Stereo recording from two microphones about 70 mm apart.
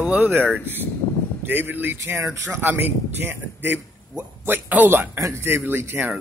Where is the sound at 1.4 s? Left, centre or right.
Right.